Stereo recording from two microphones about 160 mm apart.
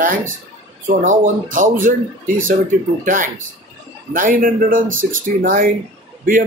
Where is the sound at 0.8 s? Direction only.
55° right (ahead or behind).